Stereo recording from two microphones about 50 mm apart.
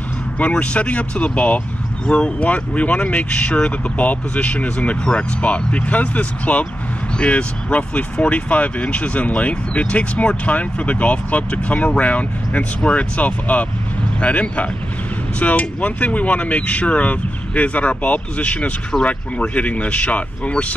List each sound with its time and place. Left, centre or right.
0.4 s speech: left